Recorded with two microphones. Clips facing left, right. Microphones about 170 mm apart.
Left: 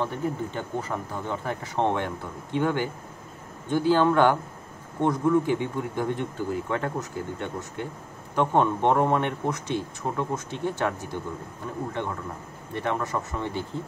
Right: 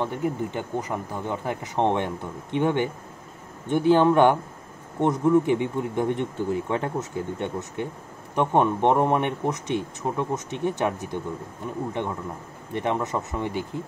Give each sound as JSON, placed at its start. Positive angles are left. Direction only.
{"t": 0.0, "sound": "speech", "side_deg": -15}